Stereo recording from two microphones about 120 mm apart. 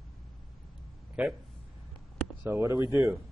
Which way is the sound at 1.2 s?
10° right (ahead or behind).